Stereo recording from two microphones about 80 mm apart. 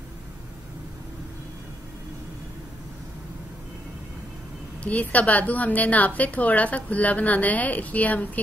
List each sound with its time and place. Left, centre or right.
4.8 s a woman's voice: centre